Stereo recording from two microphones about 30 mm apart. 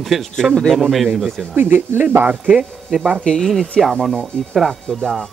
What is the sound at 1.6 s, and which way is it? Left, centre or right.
Speech, right.